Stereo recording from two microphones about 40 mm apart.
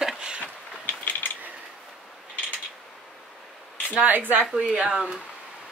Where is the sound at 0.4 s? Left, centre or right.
Left.